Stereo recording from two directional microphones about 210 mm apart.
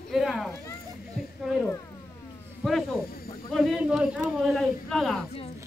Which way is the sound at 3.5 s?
Centre (ahead or behind).